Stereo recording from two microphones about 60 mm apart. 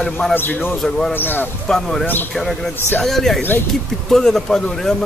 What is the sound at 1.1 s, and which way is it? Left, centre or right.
Speech, left.